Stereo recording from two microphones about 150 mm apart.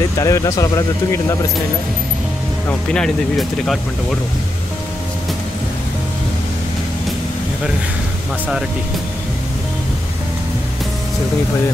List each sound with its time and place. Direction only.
0.2 s speech: 25° left (ahead or behind)
2.9 s speech: 5° left (ahead or behind)